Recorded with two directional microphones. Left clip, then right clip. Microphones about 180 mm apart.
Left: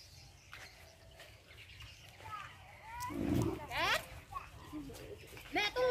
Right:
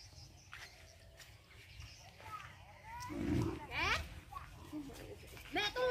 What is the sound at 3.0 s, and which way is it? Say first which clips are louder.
Wild animals: left 3 dB; 65° left (ahead or behind).